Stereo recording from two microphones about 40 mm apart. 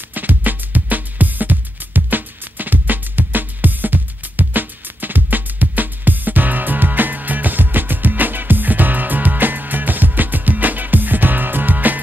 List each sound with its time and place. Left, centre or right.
0.1 s music: right